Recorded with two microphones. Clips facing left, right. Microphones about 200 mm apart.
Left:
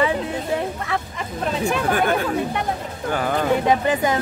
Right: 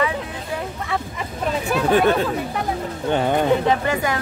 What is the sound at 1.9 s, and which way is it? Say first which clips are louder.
Speech: right 6 dB; 25° right (ahead or behind).